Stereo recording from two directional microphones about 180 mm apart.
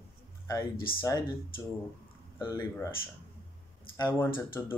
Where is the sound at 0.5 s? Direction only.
20° left (ahead or behind).